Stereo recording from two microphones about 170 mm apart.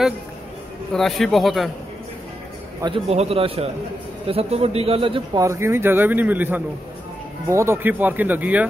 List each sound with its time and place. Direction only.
0.9 s speech: centre (ahead or behind)
2.8 s a man's voice: 35° right (ahead or behind)
5.4 s speech: 15° right (ahead or behind)